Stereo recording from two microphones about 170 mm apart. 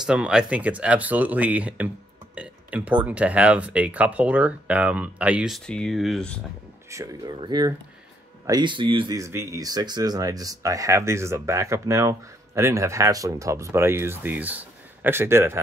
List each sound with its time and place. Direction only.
0.0 s speech: 5° right (ahead or behind)
6.9 s speech: 20° right (ahead or behind)